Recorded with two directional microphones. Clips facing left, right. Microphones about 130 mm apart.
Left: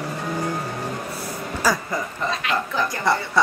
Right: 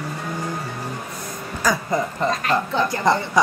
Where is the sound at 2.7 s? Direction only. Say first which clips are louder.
Right 2 dB; 25° right (ahead or behind).